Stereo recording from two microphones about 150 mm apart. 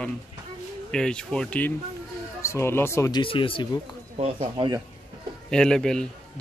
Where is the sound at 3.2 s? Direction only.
35° left (ahead or behind).